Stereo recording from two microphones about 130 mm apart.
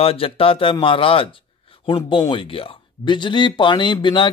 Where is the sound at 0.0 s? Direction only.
45° left (ahead or behind).